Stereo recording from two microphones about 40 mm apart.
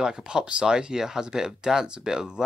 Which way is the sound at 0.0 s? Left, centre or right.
Centre.